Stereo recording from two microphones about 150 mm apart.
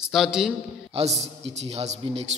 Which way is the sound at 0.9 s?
45° right (ahead or behind).